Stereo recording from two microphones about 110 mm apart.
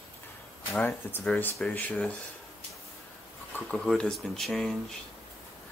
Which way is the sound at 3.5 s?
10° left (ahead or behind).